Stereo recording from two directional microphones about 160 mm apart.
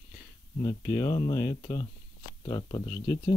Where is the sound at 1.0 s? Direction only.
25° left (ahead or behind).